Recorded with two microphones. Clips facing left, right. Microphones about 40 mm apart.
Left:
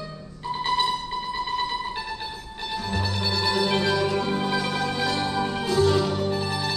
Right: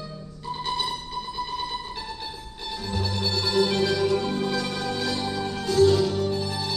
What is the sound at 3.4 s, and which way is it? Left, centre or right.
Music, centre.